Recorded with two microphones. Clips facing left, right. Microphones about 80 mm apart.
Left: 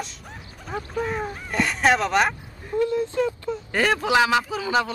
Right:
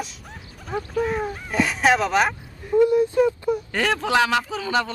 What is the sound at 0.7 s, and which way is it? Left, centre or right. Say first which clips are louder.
Speech: right 3 dB; centre.